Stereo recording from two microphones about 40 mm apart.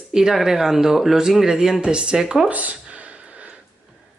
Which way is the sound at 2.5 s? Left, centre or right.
Right.